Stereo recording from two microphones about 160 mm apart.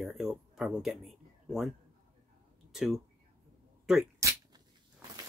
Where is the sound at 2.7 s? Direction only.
Centre (ahead or behind).